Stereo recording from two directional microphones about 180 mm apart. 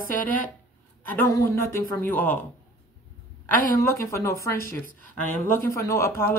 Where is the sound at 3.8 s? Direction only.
15° left (ahead or behind).